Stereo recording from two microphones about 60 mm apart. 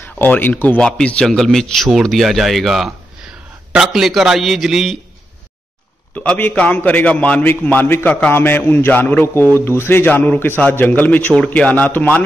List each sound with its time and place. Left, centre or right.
0.0 s speech: left
0.7 s a man's voice: centre
1.2 s a man's voice: centre
6.1 s a man's voice: left
10.0 s a man's voice: left